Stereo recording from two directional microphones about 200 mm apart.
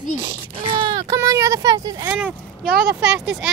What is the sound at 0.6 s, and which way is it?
Speech, 25° right (ahead or behind).